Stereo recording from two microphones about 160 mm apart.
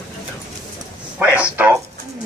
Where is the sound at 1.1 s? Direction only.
10° right (ahead or behind).